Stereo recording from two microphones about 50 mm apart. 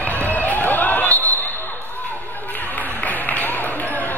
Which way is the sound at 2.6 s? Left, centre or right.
Left.